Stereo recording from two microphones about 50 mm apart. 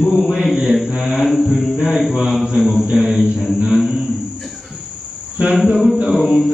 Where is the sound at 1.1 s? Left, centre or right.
Centre.